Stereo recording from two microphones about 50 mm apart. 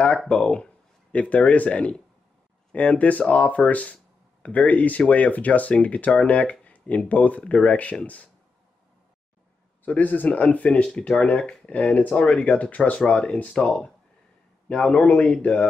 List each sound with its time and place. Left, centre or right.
0.3 s speech: left
9.8 s speech: left